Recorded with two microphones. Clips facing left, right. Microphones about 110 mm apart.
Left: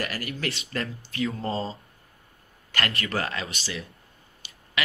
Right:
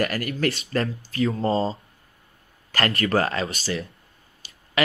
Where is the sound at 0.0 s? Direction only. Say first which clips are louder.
Right 7 dB; 50° right (ahead or behind).